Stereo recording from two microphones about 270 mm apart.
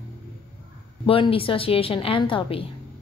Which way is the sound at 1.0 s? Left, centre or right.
Centre.